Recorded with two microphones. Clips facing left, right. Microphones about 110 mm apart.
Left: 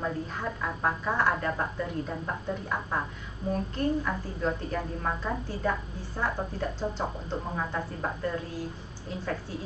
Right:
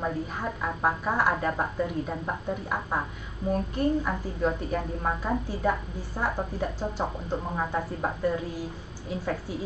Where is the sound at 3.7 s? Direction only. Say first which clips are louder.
Right 2 dB; 15° right (ahead or behind).